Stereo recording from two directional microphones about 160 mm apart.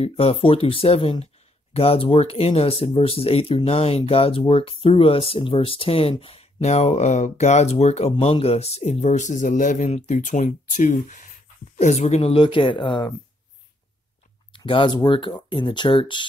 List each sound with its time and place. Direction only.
0.0 s speech: 40° left (ahead or behind)
14.5 s speech: 30° left (ahead or behind)